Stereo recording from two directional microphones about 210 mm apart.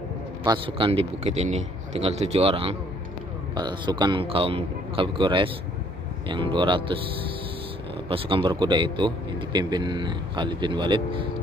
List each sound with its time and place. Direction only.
0.7 s speech: 25° right (ahead or behind)
8.1 s speech: 25° right (ahead or behind)